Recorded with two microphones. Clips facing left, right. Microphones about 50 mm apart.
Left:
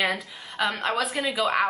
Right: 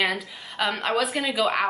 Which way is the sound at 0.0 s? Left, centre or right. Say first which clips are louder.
Right 1 dB; centre.